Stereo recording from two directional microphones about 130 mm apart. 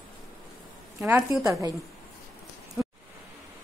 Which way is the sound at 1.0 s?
15° right (ahead or behind).